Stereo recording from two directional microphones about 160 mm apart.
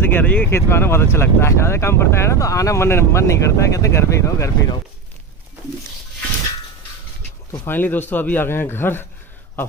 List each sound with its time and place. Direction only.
0.0 s speech: 10° left (ahead or behind)
7.6 s speech: 10° left (ahead or behind)